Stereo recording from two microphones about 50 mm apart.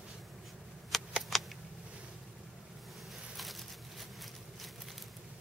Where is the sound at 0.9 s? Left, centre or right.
Centre.